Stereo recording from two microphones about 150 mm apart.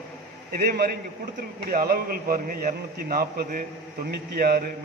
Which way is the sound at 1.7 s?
80° right.